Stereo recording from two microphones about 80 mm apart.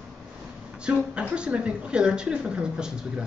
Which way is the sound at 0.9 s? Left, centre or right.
Centre.